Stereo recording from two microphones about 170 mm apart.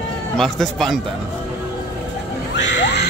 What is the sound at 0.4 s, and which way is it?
Speech, centre (ahead or behind).